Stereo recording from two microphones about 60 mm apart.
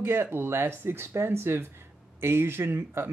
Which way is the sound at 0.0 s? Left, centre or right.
Right.